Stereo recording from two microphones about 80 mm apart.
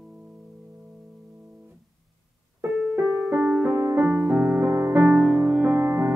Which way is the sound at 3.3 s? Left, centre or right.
Centre.